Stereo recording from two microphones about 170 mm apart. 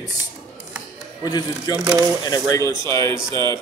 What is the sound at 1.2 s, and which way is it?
A man's voice, 25° left (ahead or behind).